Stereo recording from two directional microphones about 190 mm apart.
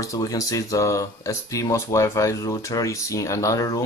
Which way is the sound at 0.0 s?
15° left (ahead or behind).